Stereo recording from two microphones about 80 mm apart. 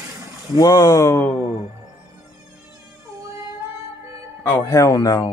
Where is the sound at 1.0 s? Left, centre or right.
Left.